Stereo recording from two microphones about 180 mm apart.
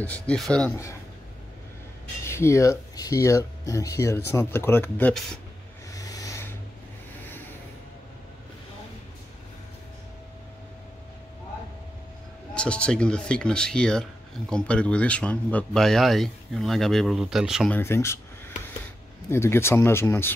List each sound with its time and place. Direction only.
0.0 s speech: 5° left (ahead or behind)
2.2 s speech: 15° left (ahead or behind)
5.9 s a sound: 20° left (ahead or behind)
12.5 s speech: 5° left (ahead or behind)
17.6 s speech: 10° left (ahead or behind)
19.3 s speech: 15° left (ahead or behind)